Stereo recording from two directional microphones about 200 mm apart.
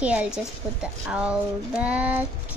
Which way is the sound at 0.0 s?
5° right (ahead or behind).